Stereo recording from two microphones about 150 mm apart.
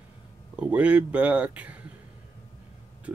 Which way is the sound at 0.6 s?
10° right (ahead or behind).